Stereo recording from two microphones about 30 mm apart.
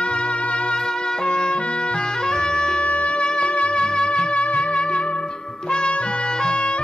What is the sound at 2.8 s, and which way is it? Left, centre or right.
Music, left.